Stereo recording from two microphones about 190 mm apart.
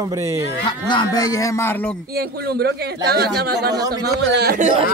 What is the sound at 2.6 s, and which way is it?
Speech, 55° right (ahead or behind).